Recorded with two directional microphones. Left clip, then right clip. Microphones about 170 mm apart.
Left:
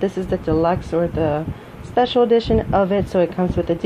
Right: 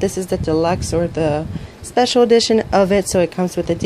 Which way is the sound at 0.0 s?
35° right (ahead or behind).